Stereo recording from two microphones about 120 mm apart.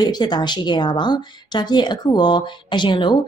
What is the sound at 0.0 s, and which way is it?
A woman's voice, 35° left (ahead or behind).